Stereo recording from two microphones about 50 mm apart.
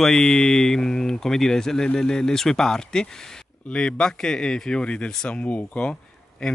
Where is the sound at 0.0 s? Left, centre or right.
Centre.